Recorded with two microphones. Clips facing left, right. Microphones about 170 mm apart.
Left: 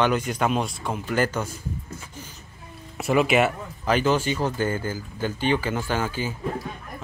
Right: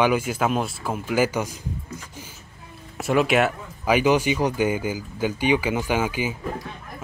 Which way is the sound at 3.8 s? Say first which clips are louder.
Right 3 dB; 10° right (ahead or behind).